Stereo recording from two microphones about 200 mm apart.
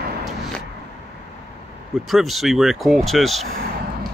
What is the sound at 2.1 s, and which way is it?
Speech, centre (ahead or behind).